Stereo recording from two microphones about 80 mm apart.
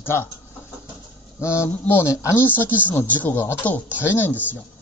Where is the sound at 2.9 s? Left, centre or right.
Left.